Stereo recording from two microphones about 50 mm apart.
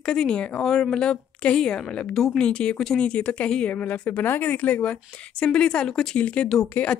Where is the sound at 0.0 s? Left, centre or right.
Centre.